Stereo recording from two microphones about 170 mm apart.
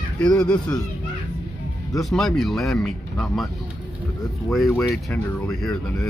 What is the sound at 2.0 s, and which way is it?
Speech, centre (ahead or behind).